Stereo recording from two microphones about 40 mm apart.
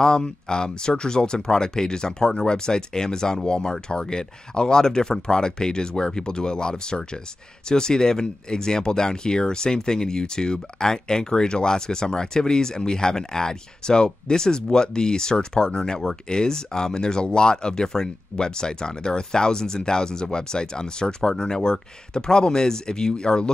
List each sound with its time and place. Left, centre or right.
0.0 s speech: centre